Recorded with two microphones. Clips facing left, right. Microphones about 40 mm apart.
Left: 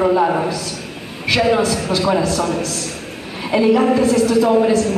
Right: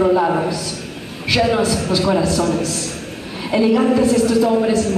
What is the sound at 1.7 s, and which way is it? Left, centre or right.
Speech, left.